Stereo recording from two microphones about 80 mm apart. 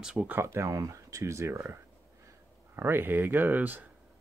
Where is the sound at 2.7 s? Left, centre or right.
Right.